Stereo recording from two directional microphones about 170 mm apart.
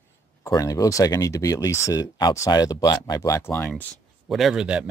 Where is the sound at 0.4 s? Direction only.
20° left (ahead or behind).